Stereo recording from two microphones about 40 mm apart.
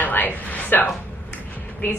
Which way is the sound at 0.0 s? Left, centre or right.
Left.